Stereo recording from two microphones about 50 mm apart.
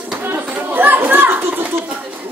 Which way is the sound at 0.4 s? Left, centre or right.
Right.